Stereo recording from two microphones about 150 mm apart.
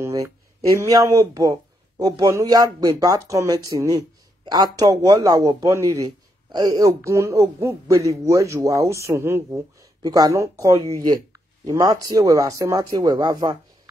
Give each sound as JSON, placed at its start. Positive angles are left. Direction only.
{"t": 0.0, "sound": "speech", "side_deg": -20}
{"t": 6.0, "sound": "a sound", "side_deg": -25}
{"t": 7.0, "sound": "speech", "side_deg": -20}